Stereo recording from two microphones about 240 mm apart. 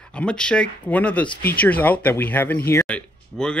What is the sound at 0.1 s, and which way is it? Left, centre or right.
Speech, centre.